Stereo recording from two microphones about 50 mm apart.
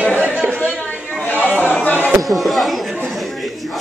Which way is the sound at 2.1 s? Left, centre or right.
Centre.